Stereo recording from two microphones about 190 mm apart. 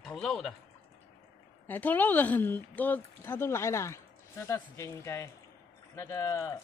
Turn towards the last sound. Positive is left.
turn(degrees=15)  # may be behind; listen again after turning